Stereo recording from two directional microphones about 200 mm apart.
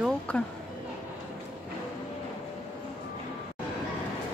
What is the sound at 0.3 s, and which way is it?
Speech, 5° left (ahead or behind).